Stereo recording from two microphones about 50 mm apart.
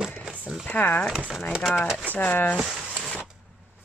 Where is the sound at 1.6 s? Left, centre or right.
Centre.